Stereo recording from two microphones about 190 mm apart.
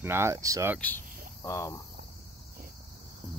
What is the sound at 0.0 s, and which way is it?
Speech, 15° right (ahead or behind).